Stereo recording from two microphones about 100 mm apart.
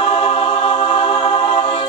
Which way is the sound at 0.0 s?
70° left (ahead or behind).